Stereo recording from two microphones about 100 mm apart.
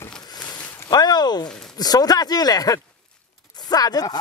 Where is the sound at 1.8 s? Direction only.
40° left (ahead or behind).